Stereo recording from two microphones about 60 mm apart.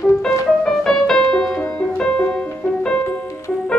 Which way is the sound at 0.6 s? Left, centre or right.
Centre.